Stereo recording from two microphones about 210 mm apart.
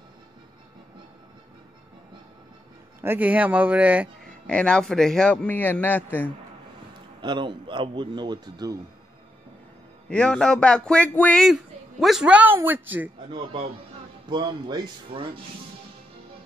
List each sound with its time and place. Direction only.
3.0 s a man's voice: 10° right (ahead or behind)
4.5 s a man's voice: 5° left (ahead or behind)
7.2 s a man's voice: 20° right (ahead or behind)
10.0 s a man's voice: 5° left (ahead or behind)
14.3 s a man's voice: 20° right (ahead or behind)